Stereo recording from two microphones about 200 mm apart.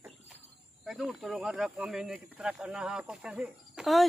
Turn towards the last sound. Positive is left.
turn(degrees=0)  # may be behind; listen again after turning